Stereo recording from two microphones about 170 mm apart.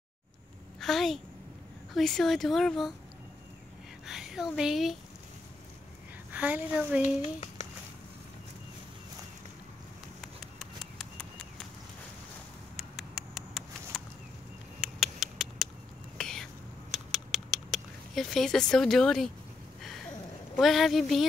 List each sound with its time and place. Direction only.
0.7 s a woman's voice: centre (ahead or behind)
4.0 s speech: centre (ahead or behind)
6.3 s a woman's voice: 5° right (ahead or behind)
7.0 s speech: 40° left (ahead or behind)
10.2 s a sound: centre (ahead or behind)
12.7 s a sound: centre (ahead or behind)
16.2 s whispering: 5° left (ahead or behind)
16.9 s a sound: centre (ahead or behind)
20.5 s speech: centre (ahead or behind)